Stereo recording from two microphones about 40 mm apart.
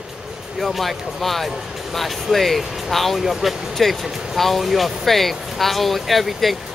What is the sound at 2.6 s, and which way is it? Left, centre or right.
Speech, centre.